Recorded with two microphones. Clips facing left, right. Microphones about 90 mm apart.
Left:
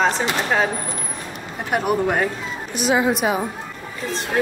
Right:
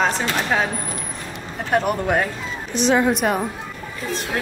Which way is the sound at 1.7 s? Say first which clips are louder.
Even; 5° left (ahead or behind).